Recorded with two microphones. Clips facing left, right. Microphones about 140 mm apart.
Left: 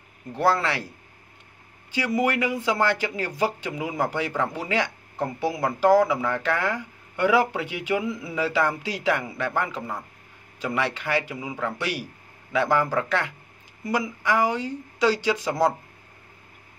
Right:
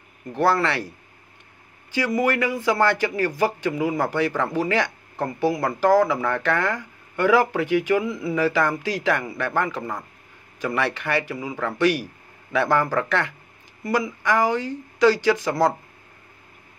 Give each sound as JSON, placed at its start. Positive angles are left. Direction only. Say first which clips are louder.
{"t": 0.4, "sound": "speech", "louder": "right 2 dB", "side_deg": 10}
{"t": 2.0, "sound": "speech", "louder": "right 2 dB", "side_deg": 15}